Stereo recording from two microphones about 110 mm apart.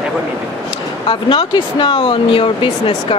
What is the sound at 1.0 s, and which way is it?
Speech, 50° left (ahead or behind).